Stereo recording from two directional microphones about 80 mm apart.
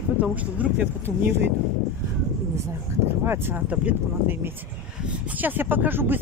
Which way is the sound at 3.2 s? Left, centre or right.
Right.